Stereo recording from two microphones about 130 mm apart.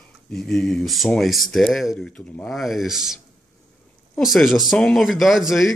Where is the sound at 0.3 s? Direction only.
5° left (ahead or behind).